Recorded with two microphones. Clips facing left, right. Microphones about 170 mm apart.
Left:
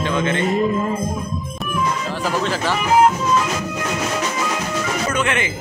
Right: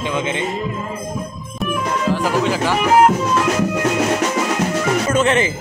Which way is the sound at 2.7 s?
65° right (ahead or behind).